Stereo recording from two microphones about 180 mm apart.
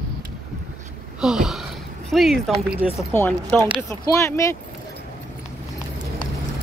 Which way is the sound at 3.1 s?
10° left (ahead or behind).